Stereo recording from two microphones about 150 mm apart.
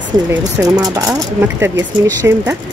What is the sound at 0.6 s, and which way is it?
Speech, 25° right (ahead or behind).